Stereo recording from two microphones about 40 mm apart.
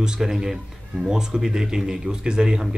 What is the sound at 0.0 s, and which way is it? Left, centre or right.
Speech, centre.